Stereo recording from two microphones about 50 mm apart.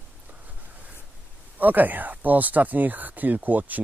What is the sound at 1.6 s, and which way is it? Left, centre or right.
Speech, right.